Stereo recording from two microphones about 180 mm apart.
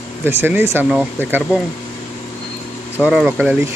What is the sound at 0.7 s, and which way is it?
Speech, 10° right (ahead or behind).